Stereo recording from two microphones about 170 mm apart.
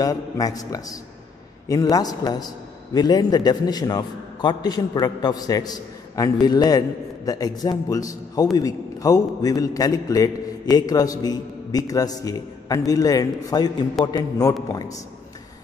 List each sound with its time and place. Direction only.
0.0 s a man's voice: 20° left (ahead or behind)